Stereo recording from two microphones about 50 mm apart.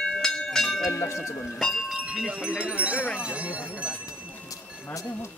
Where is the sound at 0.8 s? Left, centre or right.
Left.